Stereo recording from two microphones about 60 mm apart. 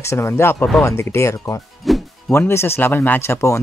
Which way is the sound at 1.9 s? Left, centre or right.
Centre.